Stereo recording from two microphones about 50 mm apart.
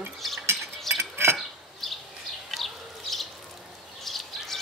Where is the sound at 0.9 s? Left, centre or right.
Centre.